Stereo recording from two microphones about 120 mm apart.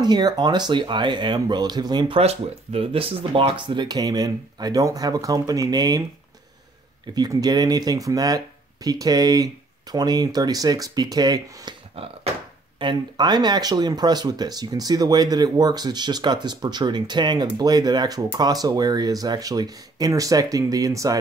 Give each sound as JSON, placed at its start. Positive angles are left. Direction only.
{"t": 0.0, "sound": "speech", "side_deg": -35}
{"t": 2.1, "sound": "speech", "side_deg": -55}
{"t": 7.2, "sound": "speech", "side_deg": -30}
{"t": 12.0, "sound": "a sound", "side_deg": -50}
{"t": 12.7, "sound": "speech", "side_deg": -40}